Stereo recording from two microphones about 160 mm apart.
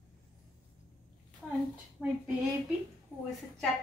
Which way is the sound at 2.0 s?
5° right (ahead or behind).